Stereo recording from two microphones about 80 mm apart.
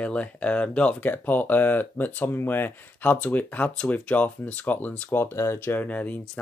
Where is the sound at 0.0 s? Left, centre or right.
Centre; by 5.8 s left.